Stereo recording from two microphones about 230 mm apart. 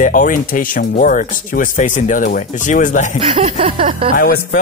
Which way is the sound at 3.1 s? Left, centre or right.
Right.